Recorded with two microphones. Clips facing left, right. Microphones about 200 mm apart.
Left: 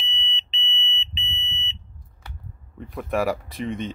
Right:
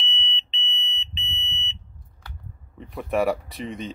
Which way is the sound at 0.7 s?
40° right (ahead or behind).